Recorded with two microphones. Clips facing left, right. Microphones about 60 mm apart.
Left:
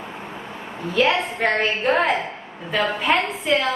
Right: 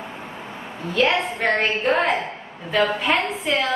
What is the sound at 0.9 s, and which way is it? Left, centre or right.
A woman's voice, centre.